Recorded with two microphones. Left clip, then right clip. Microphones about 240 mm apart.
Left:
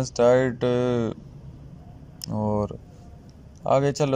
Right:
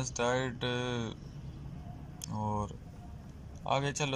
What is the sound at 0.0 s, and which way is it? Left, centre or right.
Speech, left.